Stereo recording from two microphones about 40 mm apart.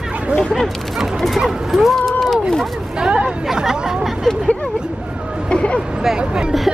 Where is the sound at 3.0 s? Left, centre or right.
Right.